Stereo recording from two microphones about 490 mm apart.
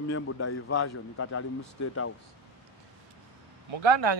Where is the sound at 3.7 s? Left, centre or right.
Right.